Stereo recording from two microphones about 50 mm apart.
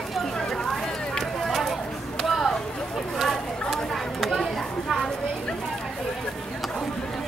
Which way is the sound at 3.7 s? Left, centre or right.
Centre.